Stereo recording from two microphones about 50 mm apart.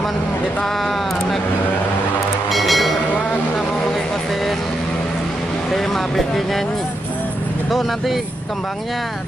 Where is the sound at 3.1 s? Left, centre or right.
Left.